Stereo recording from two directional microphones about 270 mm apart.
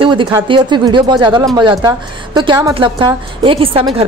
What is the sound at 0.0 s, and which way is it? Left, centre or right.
A woman's voice, centre.